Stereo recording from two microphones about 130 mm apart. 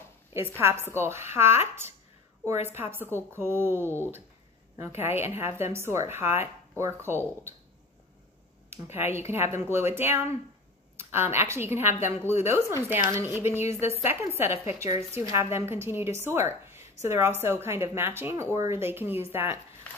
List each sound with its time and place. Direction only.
0.6 s a woman's voice: 20° right (ahead or behind)
2.6 s a woman's voice: 15° right (ahead or behind)
8.9 s a woman's voice: 20° right (ahead or behind)